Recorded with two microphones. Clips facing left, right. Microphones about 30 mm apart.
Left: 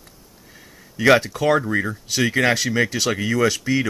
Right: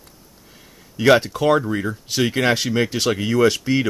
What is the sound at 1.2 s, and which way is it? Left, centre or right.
Speech, centre.